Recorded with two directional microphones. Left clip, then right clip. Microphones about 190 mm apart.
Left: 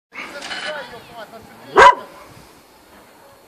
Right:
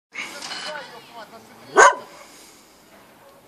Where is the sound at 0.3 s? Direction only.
40° left (ahead or behind).